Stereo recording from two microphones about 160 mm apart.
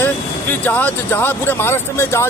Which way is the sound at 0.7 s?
10° left (ahead or behind).